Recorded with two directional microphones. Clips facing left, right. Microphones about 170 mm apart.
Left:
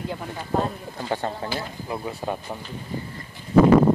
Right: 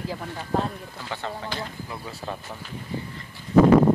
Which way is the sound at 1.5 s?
5° left (ahead or behind).